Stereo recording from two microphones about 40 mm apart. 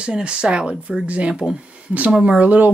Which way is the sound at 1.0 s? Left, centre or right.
Right.